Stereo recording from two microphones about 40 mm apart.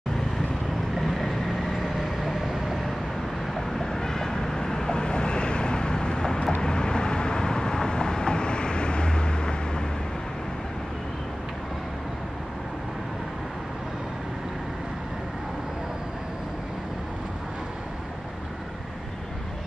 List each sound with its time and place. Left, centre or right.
0.9 s vehicle: centre
3.5 s vehicle: centre